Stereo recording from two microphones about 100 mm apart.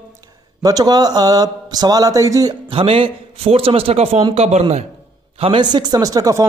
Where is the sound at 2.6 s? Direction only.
70° right (ahead or behind); by 4.9 s 90° right.